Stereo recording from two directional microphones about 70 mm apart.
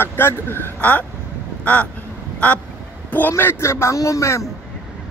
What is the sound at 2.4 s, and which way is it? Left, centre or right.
Speech, centre.